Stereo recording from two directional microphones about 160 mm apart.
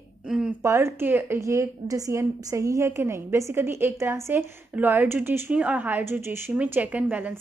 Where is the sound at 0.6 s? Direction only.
15° right (ahead or behind).